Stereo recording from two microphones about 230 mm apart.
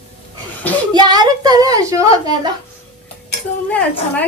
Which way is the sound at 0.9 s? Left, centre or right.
Centre.